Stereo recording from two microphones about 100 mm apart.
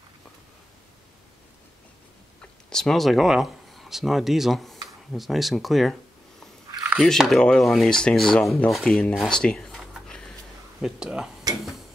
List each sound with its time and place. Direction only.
2.7 s speech: 5° left (ahead or behind)
7.0 s speech: centre (ahead or behind)
10.8 s speech: 5° right (ahead or behind)
11.5 s a sound: 40° right (ahead or behind)